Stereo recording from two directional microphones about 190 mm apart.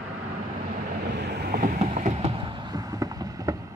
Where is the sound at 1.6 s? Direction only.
40° right (ahead or behind).